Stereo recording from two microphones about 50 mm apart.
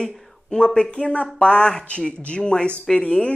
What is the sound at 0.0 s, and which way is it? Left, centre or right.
Speech, centre.